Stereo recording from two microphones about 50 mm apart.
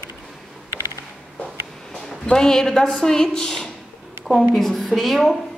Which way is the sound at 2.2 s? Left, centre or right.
Centre.